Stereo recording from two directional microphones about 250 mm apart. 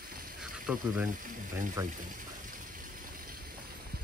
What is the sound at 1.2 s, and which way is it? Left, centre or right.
Speech, right.